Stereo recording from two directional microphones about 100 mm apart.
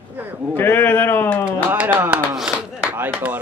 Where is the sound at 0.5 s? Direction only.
20° left (ahead or behind).